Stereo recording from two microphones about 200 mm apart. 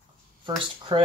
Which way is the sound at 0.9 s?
20° right (ahead or behind).